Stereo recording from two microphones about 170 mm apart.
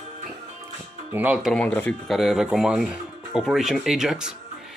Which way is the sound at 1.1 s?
10° right (ahead or behind).